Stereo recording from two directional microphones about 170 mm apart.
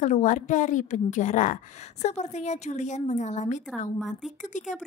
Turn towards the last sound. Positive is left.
turn(degrees=45)  # may be behind; listen again after turning